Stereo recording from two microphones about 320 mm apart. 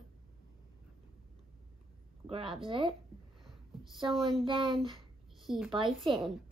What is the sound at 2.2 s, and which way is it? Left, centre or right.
Speech, centre.